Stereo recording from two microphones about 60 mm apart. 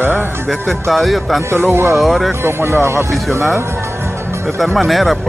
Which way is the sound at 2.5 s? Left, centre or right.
Right.